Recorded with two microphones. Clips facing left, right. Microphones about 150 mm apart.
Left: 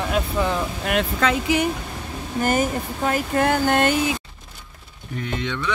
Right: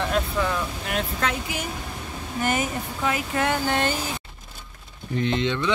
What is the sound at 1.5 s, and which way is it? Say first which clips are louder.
Speech: left 11 dB; 75° left (ahead or behind).